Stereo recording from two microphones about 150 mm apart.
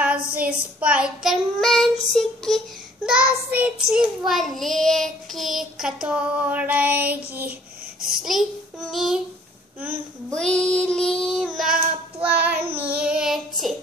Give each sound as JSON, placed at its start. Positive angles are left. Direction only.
{"t": 0.0, "sound": "child singing", "side_deg": -10}
{"t": 10.3, "sound": "child singing", "side_deg": 5}